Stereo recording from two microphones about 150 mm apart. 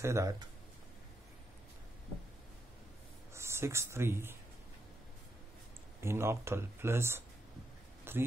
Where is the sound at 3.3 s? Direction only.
15° right (ahead or behind).